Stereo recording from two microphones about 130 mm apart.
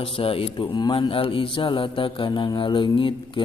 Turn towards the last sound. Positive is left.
turn(degrees=40)  # may be behind; listen again after turning